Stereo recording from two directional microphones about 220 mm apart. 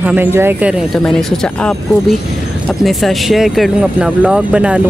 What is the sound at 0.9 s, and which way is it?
Speech, centre (ahead or behind).